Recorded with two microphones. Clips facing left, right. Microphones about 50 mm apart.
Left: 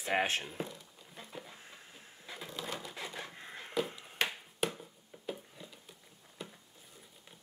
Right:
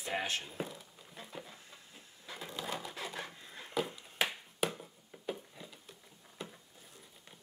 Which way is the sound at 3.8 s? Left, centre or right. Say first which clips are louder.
Even; centre.